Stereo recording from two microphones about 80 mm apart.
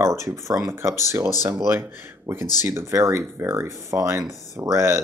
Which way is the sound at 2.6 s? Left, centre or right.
Right.